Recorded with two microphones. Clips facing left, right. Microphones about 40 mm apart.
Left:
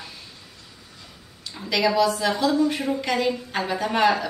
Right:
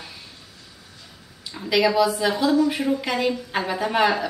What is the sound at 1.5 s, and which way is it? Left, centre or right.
A woman's voice, centre.